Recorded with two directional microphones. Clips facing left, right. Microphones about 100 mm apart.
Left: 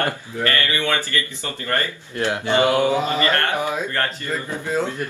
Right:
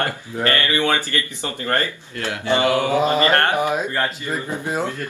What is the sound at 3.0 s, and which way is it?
Speech, 20° right (ahead or behind).